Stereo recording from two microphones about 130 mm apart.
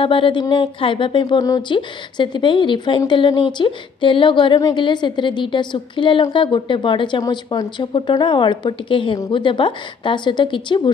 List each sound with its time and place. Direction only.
0.0 s speech: 40° left (ahead or behind)